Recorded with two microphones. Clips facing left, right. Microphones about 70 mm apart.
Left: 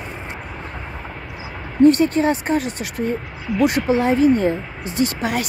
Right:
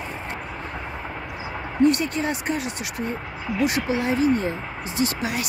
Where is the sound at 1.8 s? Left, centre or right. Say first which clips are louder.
Left 7 dB; left.